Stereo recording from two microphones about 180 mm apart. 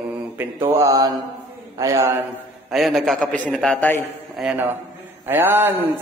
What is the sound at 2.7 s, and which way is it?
A man's voice, centre (ahead or behind).